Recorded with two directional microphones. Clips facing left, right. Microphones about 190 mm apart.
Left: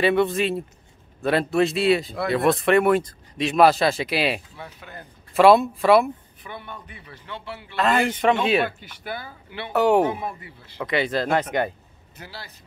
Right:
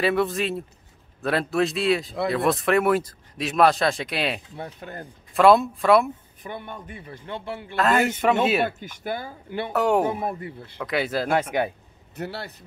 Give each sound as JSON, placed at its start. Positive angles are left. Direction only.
{"t": 0.0, "sound": "speech", "side_deg": 0}
{"t": 4.7, "sound": "a man's voice", "side_deg": -45}
{"t": 5.3, "sound": "speech", "side_deg": 0}
{"t": 6.4, "sound": "a man's voice", "side_deg": -45}
{"t": 7.7, "sound": "speech", "side_deg": 0}
{"t": 8.6, "sound": "a man's voice", "side_deg": -45}
{"t": 9.7, "sound": "speech", "side_deg": 0}
{"t": 10.1, "sound": "a man's voice", "side_deg": -50}
{"t": 10.8, "sound": "speech", "side_deg": 0}
{"t": 12.2, "sound": "a man's voice", "side_deg": -60}